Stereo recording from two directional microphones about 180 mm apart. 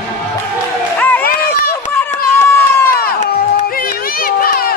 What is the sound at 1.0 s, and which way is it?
Run, 10° left (ahead or behind).